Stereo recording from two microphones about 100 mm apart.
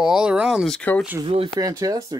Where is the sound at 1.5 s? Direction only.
35° right (ahead or behind).